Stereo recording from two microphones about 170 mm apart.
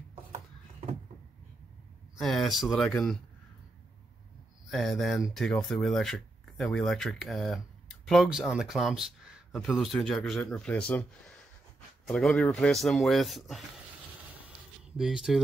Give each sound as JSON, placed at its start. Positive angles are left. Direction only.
{"t": 0.3, "sound": "a sound", "side_deg": -45}
{"t": 2.1, "sound": "speech", "side_deg": 0}
{"t": 4.6, "sound": "speech", "side_deg": 0}
{"t": 12.1, "sound": "speech", "side_deg": 0}
{"t": 14.9, "sound": "speech", "side_deg": 0}